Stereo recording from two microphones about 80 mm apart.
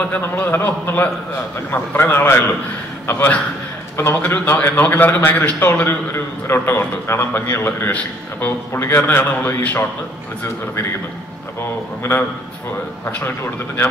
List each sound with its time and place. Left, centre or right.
0.1 s a man's voice: left
12.0 s a man's voice: left